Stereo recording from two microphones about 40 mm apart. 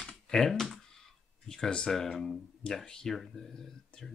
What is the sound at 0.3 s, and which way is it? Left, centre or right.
Speech, centre.